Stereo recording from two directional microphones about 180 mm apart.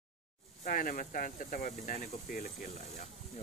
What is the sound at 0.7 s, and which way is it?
Speech, 50° left (ahead or behind).